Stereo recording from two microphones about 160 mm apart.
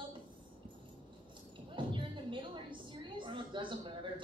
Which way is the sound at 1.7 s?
30° right (ahead or behind).